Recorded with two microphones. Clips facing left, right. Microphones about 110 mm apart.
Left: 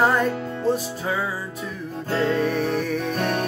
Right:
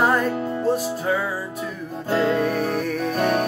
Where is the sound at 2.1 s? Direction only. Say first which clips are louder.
Right 2 dB; 10° right (ahead or behind).